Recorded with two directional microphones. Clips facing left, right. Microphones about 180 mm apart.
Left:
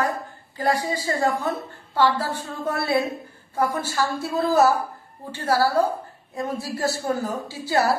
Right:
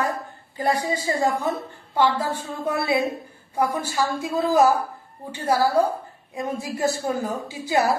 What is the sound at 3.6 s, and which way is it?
A woman's voice, 10° right (ahead or behind).